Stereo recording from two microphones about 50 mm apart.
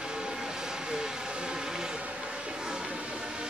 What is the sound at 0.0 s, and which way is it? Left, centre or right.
Vehicle, centre.